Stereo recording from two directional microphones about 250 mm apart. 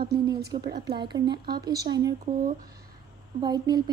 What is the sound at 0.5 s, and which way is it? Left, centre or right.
A woman's voice, right.